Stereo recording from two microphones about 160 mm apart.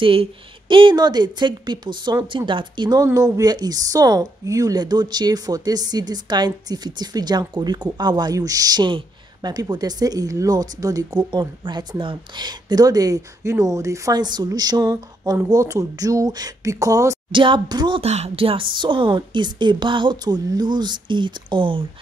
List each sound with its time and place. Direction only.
0.0 s speech: 35° right (ahead or behind)
17.3 s a woman's voice: 30° right (ahead or behind)
18.0 s speech: 40° right (ahead or behind)